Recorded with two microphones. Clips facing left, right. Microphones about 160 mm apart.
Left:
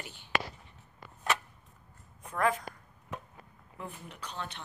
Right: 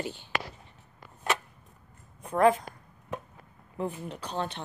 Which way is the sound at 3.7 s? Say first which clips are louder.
Right 10 dB; 35° right (ahead or behind).